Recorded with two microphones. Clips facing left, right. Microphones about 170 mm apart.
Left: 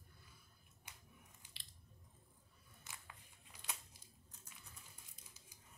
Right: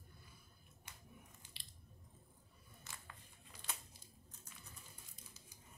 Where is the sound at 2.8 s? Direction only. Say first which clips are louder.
Right 1 dB; 15° left (ahead or behind).